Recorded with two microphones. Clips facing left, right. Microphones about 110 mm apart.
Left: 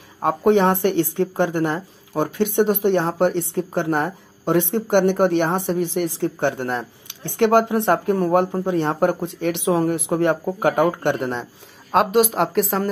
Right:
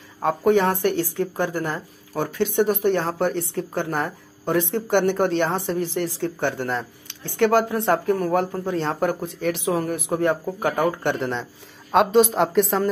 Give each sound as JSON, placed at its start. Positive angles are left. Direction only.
{"t": 0.2, "sound": "a woman's voice", "side_deg": 15}